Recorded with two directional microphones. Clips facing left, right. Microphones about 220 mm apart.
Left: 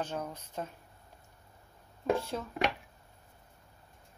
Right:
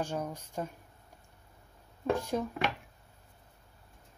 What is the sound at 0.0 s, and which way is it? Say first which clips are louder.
Speech: right 2 dB; 10° right (ahead or behind).